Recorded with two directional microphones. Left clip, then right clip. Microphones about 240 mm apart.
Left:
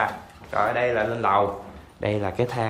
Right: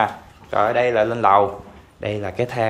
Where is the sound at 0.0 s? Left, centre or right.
Right.